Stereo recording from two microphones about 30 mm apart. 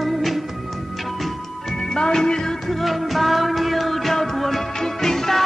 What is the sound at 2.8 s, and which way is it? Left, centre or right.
Music, centre.